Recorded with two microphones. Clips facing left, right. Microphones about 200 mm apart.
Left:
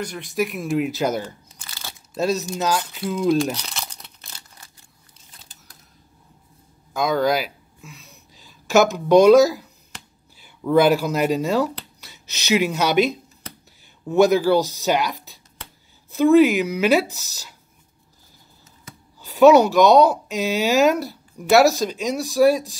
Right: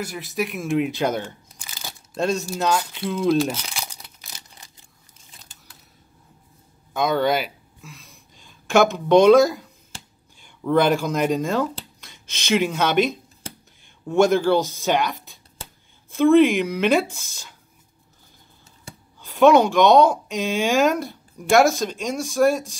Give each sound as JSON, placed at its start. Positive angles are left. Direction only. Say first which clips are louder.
{"t": 0.0, "sound": "speech", "louder": "left 2 dB", "side_deg": -5}
{"t": 1.6, "sound": "crumpling", "louder": "right 1 dB", "side_deg": -15}
{"t": 2.1, "sound": "speech", "louder": "left 1 dB", "side_deg": 5}
{"t": 4.3, "sound": "a sound", "louder": "right 1 dB", "side_deg": -20}
{"t": 6.9, "sound": "a sound", "louder": "even", "side_deg": 0}
{"t": 10.4, "sound": "speech", "louder": "left 2 dB", "side_deg": 5}
{"t": 14.0, "sound": "speech", "louder": "left 1 dB", "side_deg": 5}
{"t": 19.1, "sound": "speech", "louder": "left 2 dB", "side_deg": 5}